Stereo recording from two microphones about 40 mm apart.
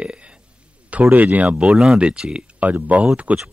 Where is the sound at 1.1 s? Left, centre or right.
Right.